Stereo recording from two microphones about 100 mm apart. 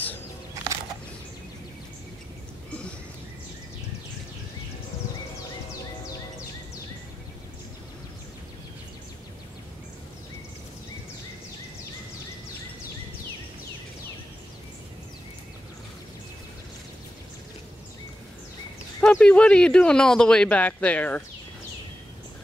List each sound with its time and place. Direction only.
18.9 s speech: 10° left (ahead or behind)